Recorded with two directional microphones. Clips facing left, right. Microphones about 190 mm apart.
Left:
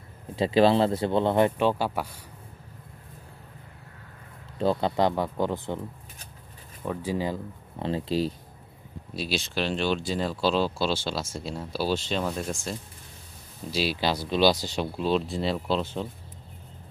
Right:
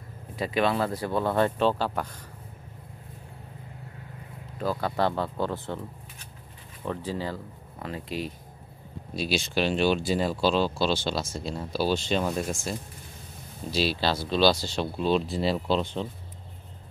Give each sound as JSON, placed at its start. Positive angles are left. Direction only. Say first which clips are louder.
{"t": 0.4, "sound": "speech", "louder": "left 5 dB", "side_deg": 30}
{"t": 4.6, "sound": "speech", "louder": "left 3 dB", "side_deg": 25}
{"t": 6.8, "sound": "speech", "louder": "left 2 dB", "side_deg": 10}
{"t": 7.8, "sound": "speech", "louder": "left 7 dB", "side_deg": 30}
{"t": 9.1, "sound": "speech", "louder": "right 2 dB", "side_deg": 0}
{"t": 13.7, "sound": "speech", "louder": "even", "side_deg": 10}
{"t": 15.0, "sound": "speech", "louder": "right 1 dB", "side_deg": 0}